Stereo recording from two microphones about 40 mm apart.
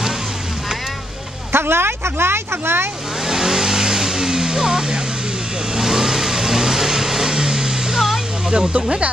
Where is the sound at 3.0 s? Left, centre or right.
Centre.